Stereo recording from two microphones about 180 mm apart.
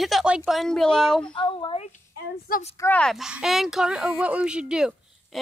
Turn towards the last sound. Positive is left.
turn(degrees=-5)  # may be behind; listen again after turning